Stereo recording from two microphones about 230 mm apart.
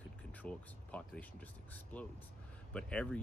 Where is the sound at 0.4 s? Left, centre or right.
Centre.